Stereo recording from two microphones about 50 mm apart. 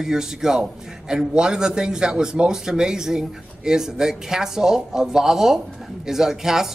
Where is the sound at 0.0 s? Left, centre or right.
Centre.